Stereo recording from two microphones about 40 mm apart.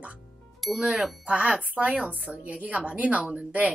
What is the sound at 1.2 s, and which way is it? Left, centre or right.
Speech, right.